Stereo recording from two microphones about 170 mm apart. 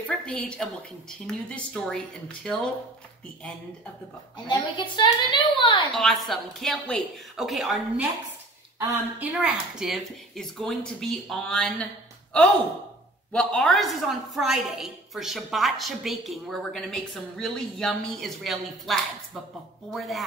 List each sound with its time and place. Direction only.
0.0 s a sound: 5° left (ahead or behind)
1.2 s a woman's voice: 5° left (ahead or behind)
4.5 s a woman's voice: 25° left (ahead or behind)
5.9 s a woman's voice: centre (ahead or behind)
8.7 s a woman's voice: 10° right (ahead or behind); by 11.7 s 5° left (ahead or behind)
13.3 s a woman's voice: 5° left (ahead or behind)